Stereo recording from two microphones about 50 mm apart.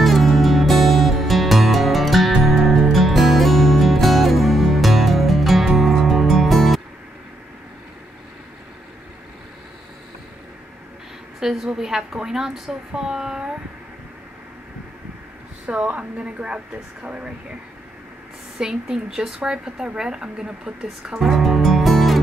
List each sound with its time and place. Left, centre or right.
0.0 s music: centre
11.3 s a woman's voice: centre
15.6 s a woman's voice: right
18.6 s a woman's voice: centre
21.3 s music: centre